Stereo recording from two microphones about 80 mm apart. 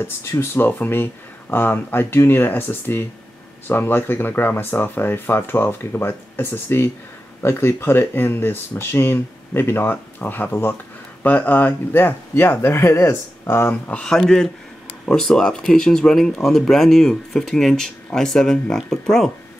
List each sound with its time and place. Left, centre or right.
0.0 s speech: left
13.8 s speech: centre